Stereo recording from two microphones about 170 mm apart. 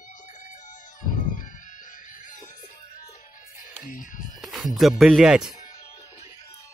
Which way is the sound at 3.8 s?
50° left (ahead or behind).